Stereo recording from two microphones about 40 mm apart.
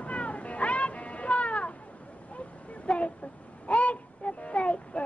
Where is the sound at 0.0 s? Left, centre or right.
Left.